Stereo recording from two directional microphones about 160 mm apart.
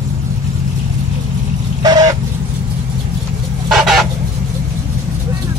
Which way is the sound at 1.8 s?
25° right (ahead or behind).